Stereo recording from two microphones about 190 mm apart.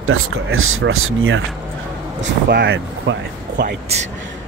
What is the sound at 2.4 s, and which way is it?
Speech, 60° right (ahead or behind).